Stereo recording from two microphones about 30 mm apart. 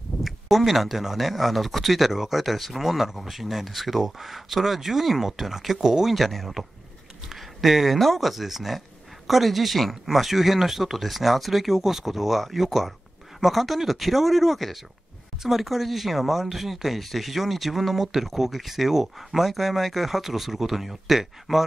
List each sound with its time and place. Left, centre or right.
0.2 s speech: centre
6.1 s speech: centre
7.3 s a sound: centre
8.0 s speech: centre